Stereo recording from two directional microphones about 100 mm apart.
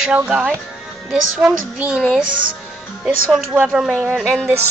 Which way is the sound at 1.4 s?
10° right (ahead or behind).